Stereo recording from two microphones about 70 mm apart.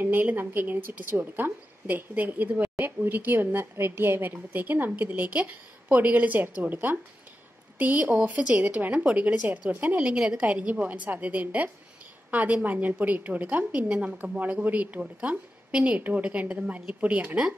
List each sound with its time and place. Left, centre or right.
0.0 s a woman's voice: right